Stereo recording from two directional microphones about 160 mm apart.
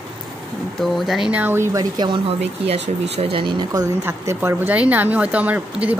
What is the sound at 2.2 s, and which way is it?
Speech, 40° right (ahead or behind).